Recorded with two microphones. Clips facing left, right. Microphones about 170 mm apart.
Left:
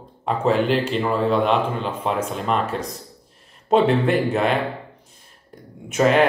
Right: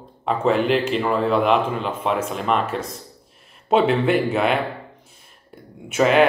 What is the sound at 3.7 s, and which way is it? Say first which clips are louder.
Speech: even; 5° right (ahead or behind).